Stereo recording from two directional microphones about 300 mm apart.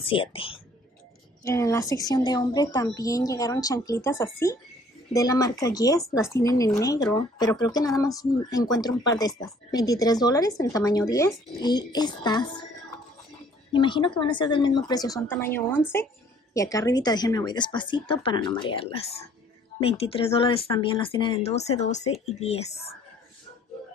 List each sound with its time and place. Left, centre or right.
0.0 s speech: centre
13.7 s speech: centre